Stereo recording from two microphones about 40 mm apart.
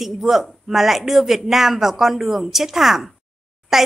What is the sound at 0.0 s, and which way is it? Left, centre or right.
A woman's voice, centre.